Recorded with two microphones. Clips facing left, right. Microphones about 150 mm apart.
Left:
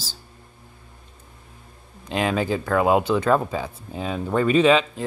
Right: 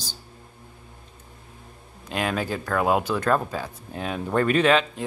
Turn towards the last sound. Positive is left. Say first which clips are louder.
# left 3 dB
turn(degrees=5)  # may be behind; listen again after turning